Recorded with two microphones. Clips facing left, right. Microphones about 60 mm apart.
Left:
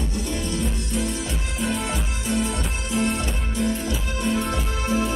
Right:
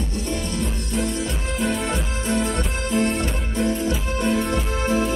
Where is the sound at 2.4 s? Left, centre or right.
Right.